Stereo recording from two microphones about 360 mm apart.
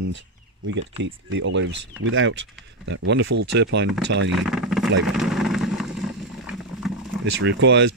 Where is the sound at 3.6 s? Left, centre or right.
Right.